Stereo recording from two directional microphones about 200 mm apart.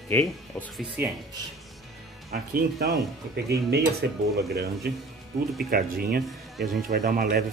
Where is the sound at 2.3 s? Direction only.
45° right (ahead or behind).